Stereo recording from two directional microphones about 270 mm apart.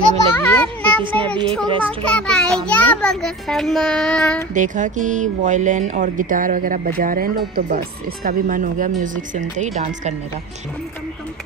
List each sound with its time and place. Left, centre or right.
0.4 s music: centre
1.3 s speech: centre
1.7 s speech: centre
2.0 s a child's voice: centre
4.6 s speech: right